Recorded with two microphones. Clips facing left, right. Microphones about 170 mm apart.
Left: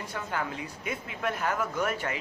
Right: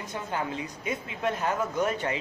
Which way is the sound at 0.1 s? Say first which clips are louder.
Right 2 dB; 20° right (ahead or behind).